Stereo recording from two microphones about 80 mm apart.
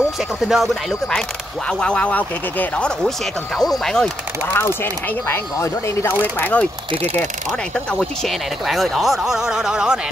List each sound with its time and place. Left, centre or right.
0.4 s speech: centre
1.7 s speech: centre
3.5 s speech: centre
4.6 s speech: left
6.3 s speech: centre
7.7 s speech: centre